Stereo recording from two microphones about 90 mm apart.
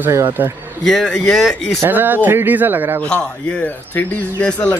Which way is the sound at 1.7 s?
20° right (ahead or behind).